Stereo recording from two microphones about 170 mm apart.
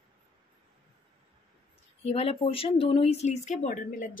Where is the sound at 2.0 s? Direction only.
35° left (ahead or behind).